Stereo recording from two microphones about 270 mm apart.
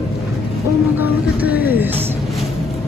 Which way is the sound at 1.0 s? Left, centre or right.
Centre.